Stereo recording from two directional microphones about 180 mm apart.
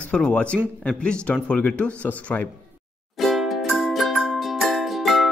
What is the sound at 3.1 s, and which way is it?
Music, centre (ahead or behind).